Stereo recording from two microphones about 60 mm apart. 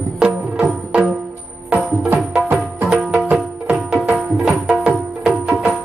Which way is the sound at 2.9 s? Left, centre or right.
Centre.